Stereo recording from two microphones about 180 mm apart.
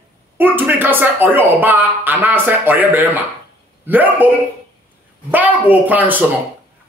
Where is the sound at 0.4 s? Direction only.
10° right (ahead or behind).